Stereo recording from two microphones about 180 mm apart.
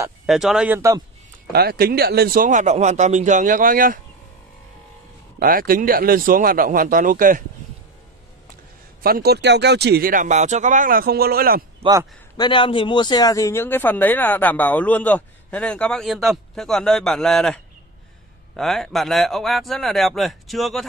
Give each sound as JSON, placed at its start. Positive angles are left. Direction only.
{"t": 0.3, "sound": "a man's voice", "side_deg": -5}
{"t": 1.5, "sound": "speech", "side_deg": -60}
{"t": 5.4, "sound": "speech", "side_deg": -55}
{"t": 9.0, "sound": "speech", "side_deg": -60}
{"t": 11.8, "sound": "a man's voice", "side_deg": -20}
{"t": 12.4, "sound": "speech", "side_deg": 25}
{"t": 18.6, "sound": "a man's voice", "side_deg": 0}